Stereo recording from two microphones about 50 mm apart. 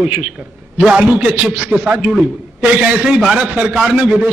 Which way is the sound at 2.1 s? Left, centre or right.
Centre.